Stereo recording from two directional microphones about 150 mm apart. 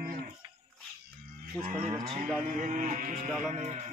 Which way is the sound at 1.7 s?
55° right (ahead or behind).